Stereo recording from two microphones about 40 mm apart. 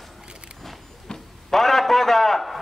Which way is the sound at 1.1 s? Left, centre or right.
Left.